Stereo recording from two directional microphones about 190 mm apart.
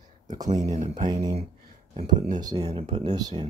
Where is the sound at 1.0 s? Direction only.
20° right (ahead or behind).